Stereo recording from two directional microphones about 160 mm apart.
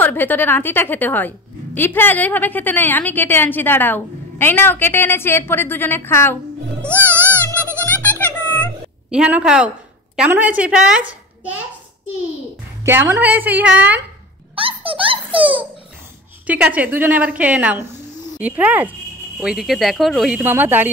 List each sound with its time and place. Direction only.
0.0 s a woman's voice: 10° left (ahead or behind)
6.9 s music: 15° right (ahead or behind)
7.8 s music: 10° left (ahead or behind)
9.1 s a woman's voice: 5° right (ahead or behind)
12.8 s a woman's voice: 15° right (ahead or behind)
14.5 s music: 35° right (ahead or behind)
14.9 s a child's voice: 35° right (ahead or behind)
16.4 s a woman's voice: 10° right (ahead or behind)
20.4 s a woman's voice: 10° right (ahead or behind)